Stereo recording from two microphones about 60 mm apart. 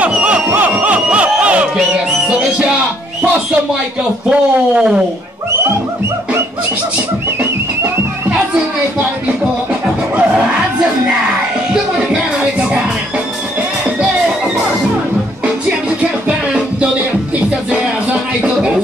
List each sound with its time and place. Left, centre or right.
0.1 s a sound: centre
0.5 s music: right
4.3 s speech: centre
11.7 s music: centre
16.3 s music: centre